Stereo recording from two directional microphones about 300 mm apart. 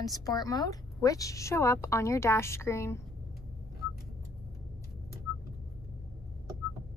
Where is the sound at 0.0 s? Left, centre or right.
Centre.